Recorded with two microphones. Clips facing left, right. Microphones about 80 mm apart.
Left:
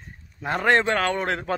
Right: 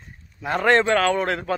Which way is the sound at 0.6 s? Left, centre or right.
Left.